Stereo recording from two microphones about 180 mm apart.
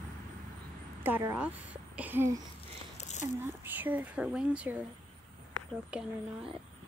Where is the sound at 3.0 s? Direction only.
40° left (ahead or behind).